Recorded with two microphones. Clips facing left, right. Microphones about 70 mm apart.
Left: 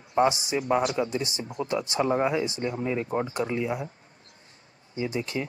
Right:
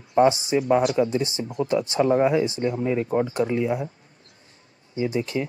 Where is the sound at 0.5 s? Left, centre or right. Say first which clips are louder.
Right 5 dB; centre.